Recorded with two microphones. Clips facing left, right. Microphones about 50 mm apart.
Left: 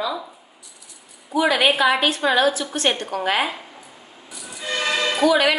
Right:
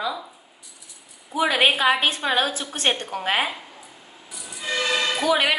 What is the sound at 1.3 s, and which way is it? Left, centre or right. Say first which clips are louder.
A woman's voice: left 2 dB; right.